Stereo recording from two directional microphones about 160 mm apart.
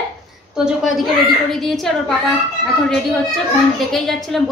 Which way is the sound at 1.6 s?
Centre (ahead or behind).